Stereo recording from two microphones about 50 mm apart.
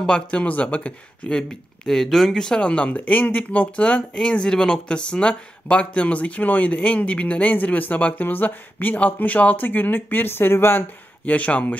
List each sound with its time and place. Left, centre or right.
0.0 s speech: left
1.5 s speech: centre; by 10.9 s left
11.2 s speech: left